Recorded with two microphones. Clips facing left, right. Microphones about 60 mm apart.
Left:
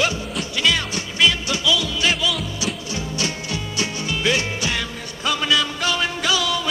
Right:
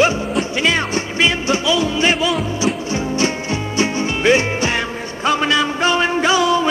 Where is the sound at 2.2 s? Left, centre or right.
Right.